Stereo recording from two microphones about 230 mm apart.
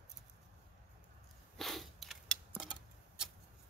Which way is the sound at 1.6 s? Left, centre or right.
Centre.